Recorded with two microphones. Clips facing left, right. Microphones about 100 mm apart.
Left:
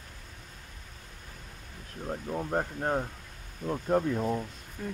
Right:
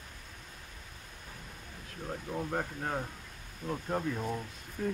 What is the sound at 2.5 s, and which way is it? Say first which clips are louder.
Speech: left 7 dB; 40° left (ahead or behind).